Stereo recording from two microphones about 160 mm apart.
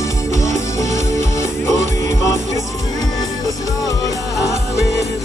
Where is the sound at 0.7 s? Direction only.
20° left (ahead or behind).